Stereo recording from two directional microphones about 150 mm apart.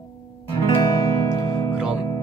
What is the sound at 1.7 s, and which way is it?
Music, 5° right (ahead or behind).